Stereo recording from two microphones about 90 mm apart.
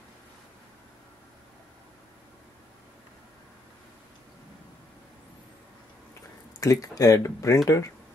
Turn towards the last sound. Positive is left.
turn(degrees=35)  # may be behind; listen again after turning